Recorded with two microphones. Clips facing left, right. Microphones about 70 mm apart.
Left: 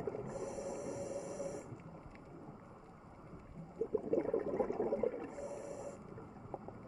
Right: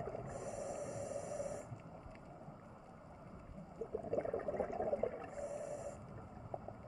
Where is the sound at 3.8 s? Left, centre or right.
Centre.